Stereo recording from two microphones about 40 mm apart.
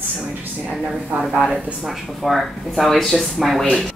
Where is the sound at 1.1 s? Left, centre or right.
Right.